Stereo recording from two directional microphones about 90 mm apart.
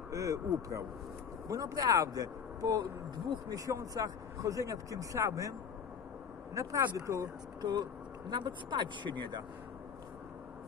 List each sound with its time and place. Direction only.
0.1 s speech: 35° right (ahead or behind)
6.5 s speech: 35° right (ahead or behind)
7.6 s speech: 50° right (ahead or behind)